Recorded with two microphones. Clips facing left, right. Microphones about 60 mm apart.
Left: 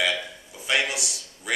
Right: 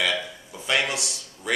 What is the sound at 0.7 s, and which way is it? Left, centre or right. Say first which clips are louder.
Speech: right 1 dB; centre.